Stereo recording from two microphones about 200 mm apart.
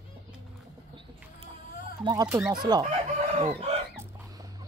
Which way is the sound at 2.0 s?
20° right (ahead or behind).